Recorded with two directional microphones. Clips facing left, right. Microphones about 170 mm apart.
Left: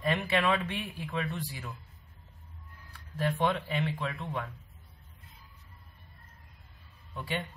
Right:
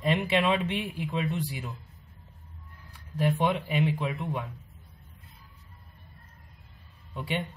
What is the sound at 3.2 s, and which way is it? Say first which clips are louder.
Speech: right 3 dB; 15° right (ahead or behind).